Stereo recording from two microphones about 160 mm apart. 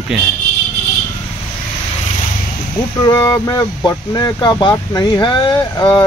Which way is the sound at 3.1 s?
25° left (ahead or behind).